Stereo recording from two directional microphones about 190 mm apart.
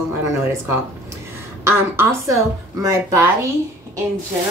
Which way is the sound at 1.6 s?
15° right (ahead or behind).